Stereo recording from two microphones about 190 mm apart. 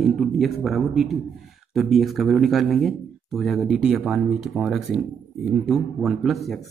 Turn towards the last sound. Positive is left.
turn(degrees=0)  # may be behind; listen again after turning